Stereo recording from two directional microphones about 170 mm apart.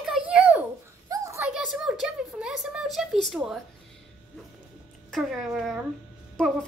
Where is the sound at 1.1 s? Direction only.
20° right (ahead or behind).